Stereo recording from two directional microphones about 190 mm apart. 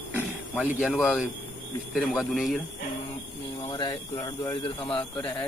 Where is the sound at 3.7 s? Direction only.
25° left (ahead or behind).